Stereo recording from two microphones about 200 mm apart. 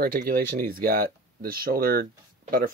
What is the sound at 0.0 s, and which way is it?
Speech, 45° right (ahead or behind).